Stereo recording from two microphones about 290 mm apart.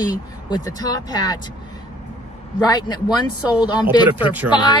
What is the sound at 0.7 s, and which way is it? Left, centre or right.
Speech, centre.